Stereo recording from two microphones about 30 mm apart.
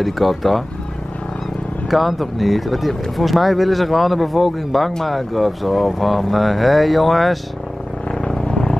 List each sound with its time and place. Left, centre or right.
0.0 s speech: centre
1.9 s speech: centre
8.1 s vehicle: left